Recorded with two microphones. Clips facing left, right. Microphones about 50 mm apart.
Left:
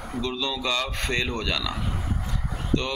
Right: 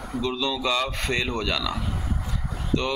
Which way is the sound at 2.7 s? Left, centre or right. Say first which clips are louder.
Right 1 dB; right.